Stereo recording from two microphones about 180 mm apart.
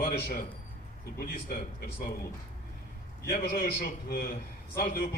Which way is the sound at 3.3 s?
55° left (ahead or behind).